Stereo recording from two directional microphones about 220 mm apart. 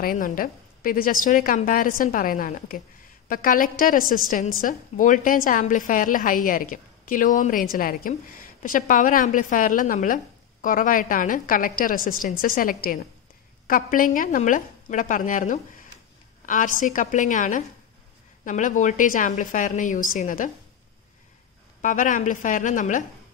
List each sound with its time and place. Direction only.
0.0 s a woman's voice: 40° left (ahead or behind)
21.8 s a woman's voice: 35° left (ahead or behind)